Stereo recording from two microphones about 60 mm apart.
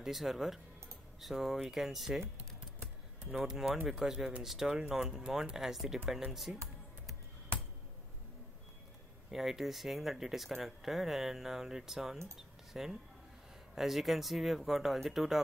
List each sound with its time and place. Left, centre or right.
0.0 s speech: centre
3.4 s speech: centre
9.3 s speech: centre
12.4 s a sound: centre
13.7 s speech: centre